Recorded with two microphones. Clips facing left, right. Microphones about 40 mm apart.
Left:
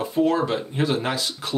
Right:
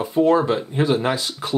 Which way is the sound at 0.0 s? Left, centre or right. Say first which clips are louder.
Right 4 dB; centre.